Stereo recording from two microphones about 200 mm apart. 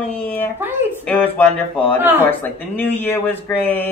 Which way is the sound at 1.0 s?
5° left (ahead or behind).